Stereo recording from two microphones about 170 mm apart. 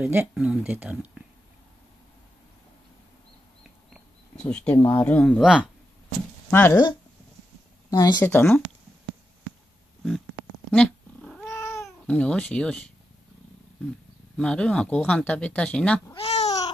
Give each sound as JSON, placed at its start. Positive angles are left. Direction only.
{"t": 0.0, "sound": "speech", "side_deg": -10}
{"t": 3.9, "sound": "speech", "side_deg": 5}
{"t": 5.4, "sound": "speech", "side_deg": -5}
{"t": 6.5, "sound": "speech", "side_deg": 15}
{"t": 8.2, "sound": "speech", "side_deg": 10}
{"t": 10.7, "sound": "cat", "side_deg": 5}
{"t": 11.5, "sound": "cat", "side_deg": 15}
{"t": 11.8, "sound": "speech", "side_deg": 5}
{"t": 14.3, "sound": "speech", "side_deg": 5}
{"t": 16.1, "sound": "babbling", "side_deg": 35}